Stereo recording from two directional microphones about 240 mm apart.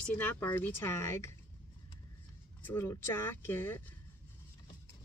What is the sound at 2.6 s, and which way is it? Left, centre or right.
Speech, centre.